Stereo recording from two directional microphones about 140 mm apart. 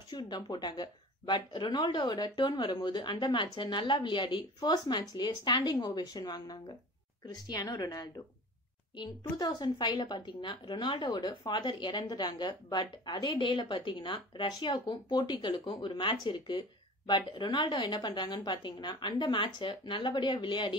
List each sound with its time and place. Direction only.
0.1 s a woman's voice: 35° left (ahead or behind)